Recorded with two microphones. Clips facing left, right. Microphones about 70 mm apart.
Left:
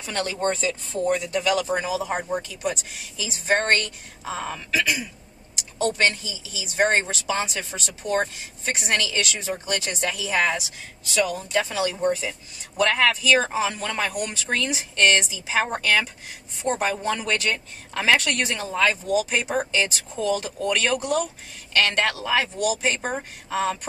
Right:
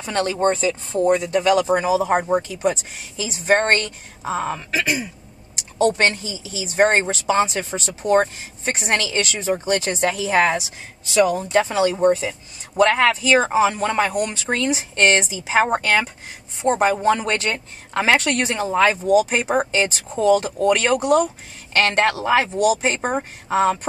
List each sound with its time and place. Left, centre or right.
0.0 s a man's voice: right
16.6 s speech: right
17.0 s a man's voice: right
19.1 s a man's voice: right
21.0 s speech: right
21.7 s a man's voice: right